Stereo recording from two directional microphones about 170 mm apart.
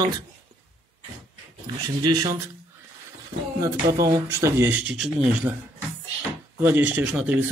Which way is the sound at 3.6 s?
20° right (ahead or behind).